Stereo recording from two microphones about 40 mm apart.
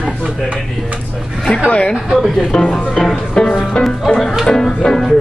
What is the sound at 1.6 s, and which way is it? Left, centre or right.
Speech, left.